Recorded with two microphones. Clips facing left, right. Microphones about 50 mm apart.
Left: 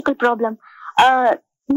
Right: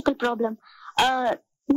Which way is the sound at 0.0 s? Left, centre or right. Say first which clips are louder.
Left 6 dB; left.